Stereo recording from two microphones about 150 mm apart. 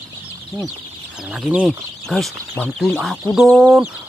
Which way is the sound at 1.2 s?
5° right (ahead or behind).